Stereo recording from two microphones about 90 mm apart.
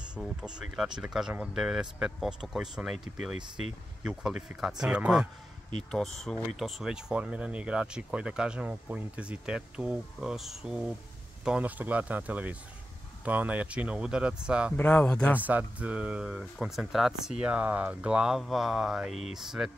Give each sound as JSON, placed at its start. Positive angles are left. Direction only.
{"t": 0.2, "sound": "speech", "side_deg": -5}
{"t": 5.9, "sound": "speech", "side_deg": 5}
{"t": 14.8, "sound": "speech", "side_deg": 20}
{"t": 15.3, "sound": "speech", "side_deg": -15}
{"t": 18.4, "sound": "mantra", "side_deg": -5}